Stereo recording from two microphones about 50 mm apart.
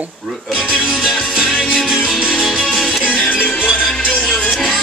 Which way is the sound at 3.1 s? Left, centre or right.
Left.